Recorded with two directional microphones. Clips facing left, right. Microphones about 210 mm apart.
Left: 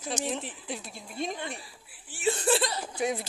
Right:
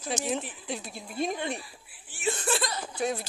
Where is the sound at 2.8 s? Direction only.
15° left (ahead or behind).